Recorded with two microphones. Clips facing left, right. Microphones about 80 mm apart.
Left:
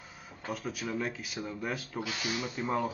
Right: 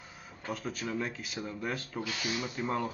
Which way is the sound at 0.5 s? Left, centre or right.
Centre.